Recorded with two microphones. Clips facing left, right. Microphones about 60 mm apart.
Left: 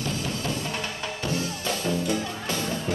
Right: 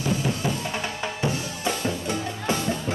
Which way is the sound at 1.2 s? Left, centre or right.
Right.